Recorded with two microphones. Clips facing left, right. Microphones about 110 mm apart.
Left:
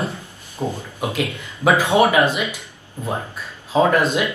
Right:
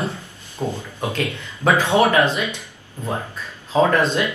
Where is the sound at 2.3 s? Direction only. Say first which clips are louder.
Even; 25° right (ahead or behind).